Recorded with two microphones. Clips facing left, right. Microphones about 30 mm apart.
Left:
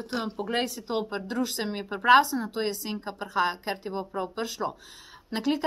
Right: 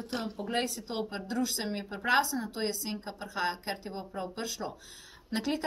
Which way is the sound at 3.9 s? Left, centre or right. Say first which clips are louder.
Left 6 dB; centre.